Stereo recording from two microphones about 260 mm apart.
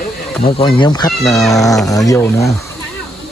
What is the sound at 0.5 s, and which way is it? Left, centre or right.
Speech, centre.